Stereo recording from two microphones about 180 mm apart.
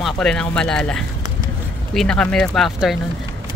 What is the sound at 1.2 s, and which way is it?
Run, 25° right (ahead or behind).